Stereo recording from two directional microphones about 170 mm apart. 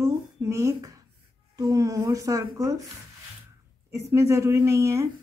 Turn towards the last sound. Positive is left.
turn(degrees=-15)  # may be behind; listen again after turning